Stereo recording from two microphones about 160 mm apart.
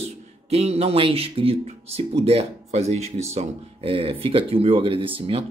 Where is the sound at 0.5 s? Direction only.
40° right (ahead or behind).